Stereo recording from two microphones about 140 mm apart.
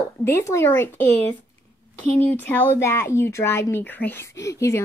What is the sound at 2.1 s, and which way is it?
Speech, 15° left (ahead or behind).